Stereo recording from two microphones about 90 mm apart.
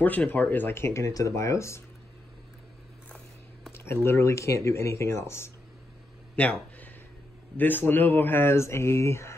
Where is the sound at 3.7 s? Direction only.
30° left (ahead or behind).